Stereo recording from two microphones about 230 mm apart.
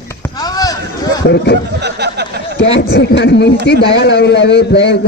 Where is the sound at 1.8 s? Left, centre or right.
Right.